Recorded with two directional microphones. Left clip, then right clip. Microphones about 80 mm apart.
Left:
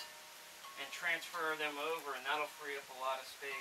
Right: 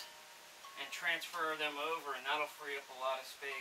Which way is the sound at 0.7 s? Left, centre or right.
Right.